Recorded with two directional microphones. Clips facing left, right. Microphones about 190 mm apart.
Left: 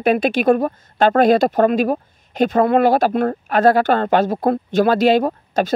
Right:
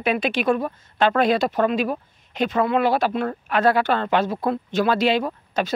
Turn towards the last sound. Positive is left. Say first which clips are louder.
# left 6 dB
turn(degrees=45)  # may be behind; listen again after turning